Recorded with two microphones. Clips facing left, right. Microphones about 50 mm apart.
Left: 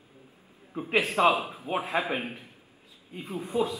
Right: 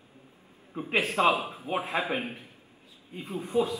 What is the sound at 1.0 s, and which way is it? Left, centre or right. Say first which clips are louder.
A man's voice: left 1 dB; left.